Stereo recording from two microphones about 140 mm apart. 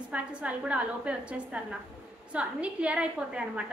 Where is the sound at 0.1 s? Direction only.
10° right (ahead or behind).